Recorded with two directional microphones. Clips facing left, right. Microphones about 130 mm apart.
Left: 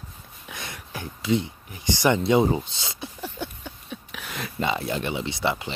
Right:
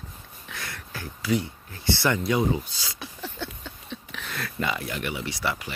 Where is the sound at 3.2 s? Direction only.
15° left (ahead or behind).